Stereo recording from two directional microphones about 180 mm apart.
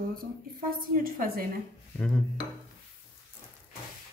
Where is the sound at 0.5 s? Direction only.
50° right (ahead or behind).